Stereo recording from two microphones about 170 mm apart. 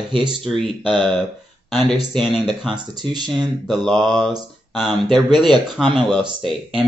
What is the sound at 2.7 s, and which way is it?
Speech, 25° right (ahead or behind).